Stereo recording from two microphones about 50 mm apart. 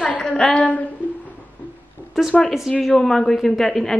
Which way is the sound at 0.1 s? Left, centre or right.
Left.